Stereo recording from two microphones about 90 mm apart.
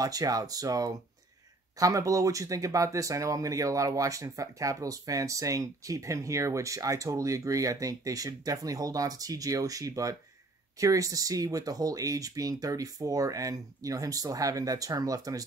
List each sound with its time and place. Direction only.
0.0 s speech: 45° right (ahead or behind)